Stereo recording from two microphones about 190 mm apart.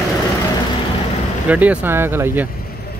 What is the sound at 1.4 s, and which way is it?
A man's voice, 10° right (ahead or behind).